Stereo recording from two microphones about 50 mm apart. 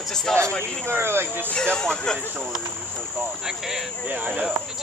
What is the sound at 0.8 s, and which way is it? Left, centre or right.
Speech, right.